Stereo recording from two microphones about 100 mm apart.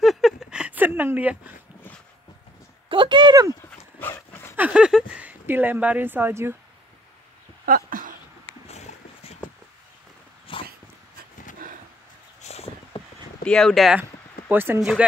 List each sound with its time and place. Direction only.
0.0 s a sound: centre (ahead or behind)
2.9 s speech: 55° right (ahead or behind)
3.6 s dog: 25° left (ahead or behind)
4.6 s speech: 10° right (ahead or behind)
8.6 s a sound: 90° left
10.5 s dog: 60° left (ahead or behind)
12.4 s vehicle: 90° left
13.4 s speech: 5° left (ahead or behind)
14.5 s speech: 20° right (ahead or behind)
14.8 s speech: 5° right (ahead or behind)